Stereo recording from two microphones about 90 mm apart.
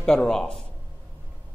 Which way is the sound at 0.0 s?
5° left (ahead or behind).